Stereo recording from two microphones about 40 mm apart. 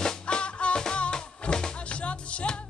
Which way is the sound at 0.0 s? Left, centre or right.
Left.